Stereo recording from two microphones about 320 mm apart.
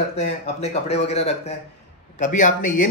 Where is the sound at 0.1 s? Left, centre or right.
Centre.